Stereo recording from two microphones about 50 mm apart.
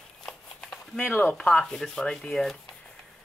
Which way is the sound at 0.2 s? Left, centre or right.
Centre.